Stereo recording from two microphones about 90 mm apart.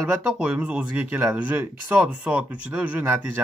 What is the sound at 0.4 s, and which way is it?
Speech, 15° right (ahead or behind).